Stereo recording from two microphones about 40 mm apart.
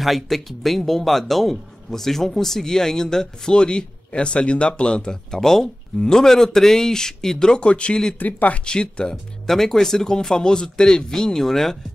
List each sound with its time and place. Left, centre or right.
0.0 s speech: centre; by 5.4 s left
5.4 s speech: centre
7.6 s speech: left
8.2 s speech: left
8.6 s speech: left
9.1 s speech: centre